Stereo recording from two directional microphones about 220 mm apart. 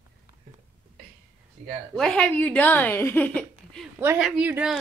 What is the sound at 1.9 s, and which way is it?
Speech, 5° left (ahead or behind).